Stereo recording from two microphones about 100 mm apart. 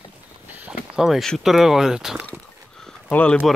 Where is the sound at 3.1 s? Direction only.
15° left (ahead or behind).